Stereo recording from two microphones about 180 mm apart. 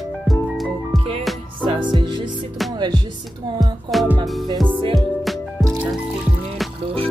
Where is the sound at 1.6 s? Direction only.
25° right (ahead or behind).